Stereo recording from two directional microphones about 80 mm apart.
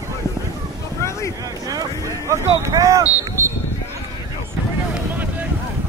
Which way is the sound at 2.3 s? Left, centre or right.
Right.